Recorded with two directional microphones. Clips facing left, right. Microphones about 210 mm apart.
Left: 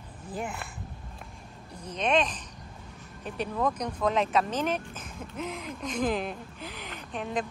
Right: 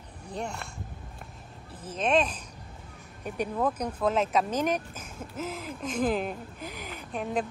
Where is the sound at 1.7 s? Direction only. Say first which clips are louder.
Right 1 dB; 5° right (ahead or behind).